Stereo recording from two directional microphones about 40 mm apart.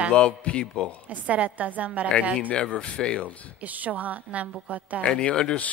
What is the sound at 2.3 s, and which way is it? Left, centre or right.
Speech, left.